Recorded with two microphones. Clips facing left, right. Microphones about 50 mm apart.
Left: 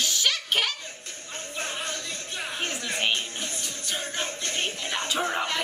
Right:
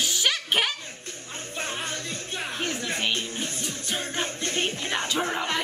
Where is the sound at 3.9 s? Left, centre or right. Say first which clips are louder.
Right 1 dB; right.